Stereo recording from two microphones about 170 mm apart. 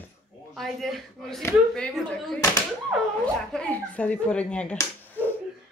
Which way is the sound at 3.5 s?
5° left (ahead or behind).